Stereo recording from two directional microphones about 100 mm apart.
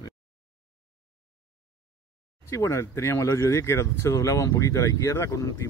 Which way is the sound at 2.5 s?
30° left (ahead or behind).